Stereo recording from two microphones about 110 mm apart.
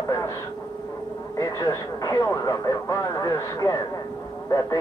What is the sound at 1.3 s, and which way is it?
Speech, 30° left (ahead or behind).